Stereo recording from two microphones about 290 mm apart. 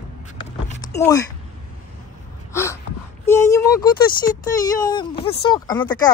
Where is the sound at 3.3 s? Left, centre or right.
Centre.